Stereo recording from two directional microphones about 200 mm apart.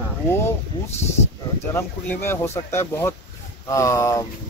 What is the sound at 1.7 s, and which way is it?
Speech, 10° left (ahead or behind).